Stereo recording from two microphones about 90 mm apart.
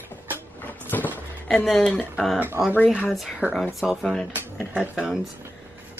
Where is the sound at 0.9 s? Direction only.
20° left (ahead or behind).